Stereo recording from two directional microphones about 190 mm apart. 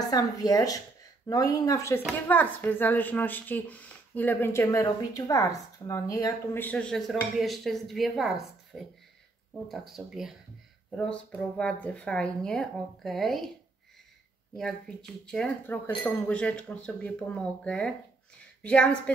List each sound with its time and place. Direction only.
0.1 s speech: 20° left (ahead or behind); by 13.5 s centre (ahead or behind)
14.6 s speech: 5° left (ahead or behind)